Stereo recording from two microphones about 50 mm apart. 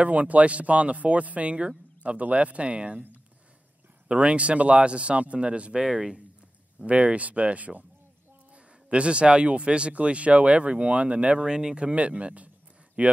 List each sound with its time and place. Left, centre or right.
0.0 s speech: right
4.1 s speech: right
6.9 s speech: right